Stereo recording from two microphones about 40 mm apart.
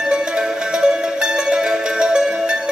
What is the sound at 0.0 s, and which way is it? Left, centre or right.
Music, right.